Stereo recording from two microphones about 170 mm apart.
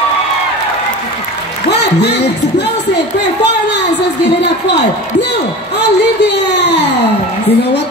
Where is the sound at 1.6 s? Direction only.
80° left.